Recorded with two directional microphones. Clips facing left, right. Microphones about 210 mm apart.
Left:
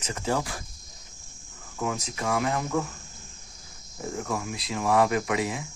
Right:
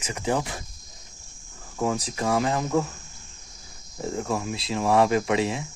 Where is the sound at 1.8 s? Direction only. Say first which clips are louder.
Right 4 dB; 35° right (ahead or behind).